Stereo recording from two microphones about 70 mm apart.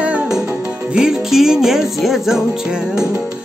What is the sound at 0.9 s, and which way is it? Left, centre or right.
Music, centre.